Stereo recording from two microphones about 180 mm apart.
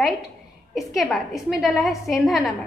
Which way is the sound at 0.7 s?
Centre (ahead or behind).